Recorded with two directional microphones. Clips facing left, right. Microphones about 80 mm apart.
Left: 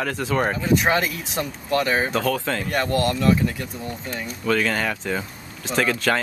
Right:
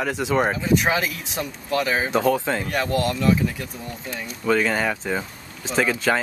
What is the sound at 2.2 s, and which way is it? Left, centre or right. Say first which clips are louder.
Speech: right 3 dB; centre.